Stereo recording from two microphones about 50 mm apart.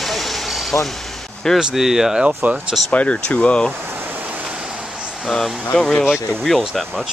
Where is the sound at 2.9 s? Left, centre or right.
Left.